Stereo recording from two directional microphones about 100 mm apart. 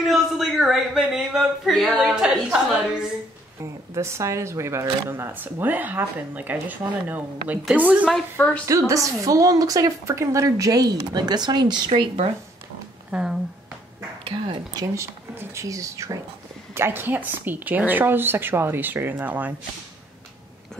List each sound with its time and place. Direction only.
0.0 s speech: centre (ahead or behind)
3.9 s a woman's voice: 30° right (ahead or behind)
8.4 s a woman's voice: 15° left (ahead or behind)
8.6 s a woman's voice: 30° right (ahead or behind)
13.1 s speech: 5° right (ahead or behind)
14.2 s speech: 65° right (ahead or behind)
15.3 s a woman's voice: 30° right (ahead or behind)